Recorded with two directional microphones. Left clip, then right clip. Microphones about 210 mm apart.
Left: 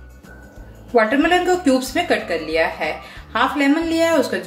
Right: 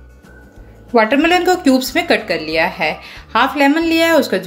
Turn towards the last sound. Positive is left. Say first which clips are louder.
# right 4 dB
turn(degrees=-40)  # may be behind; listen again after turning